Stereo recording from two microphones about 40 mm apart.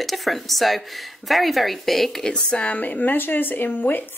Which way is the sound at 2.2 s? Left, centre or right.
Left.